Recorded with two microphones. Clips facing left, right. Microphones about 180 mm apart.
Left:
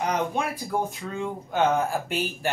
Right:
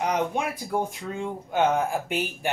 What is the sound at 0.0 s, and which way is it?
Speech, 10° right (ahead or behind).